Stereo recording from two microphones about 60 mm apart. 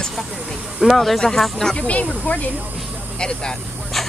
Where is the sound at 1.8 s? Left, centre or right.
Left.